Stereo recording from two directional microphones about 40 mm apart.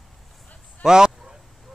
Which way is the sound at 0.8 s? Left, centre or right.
Centre.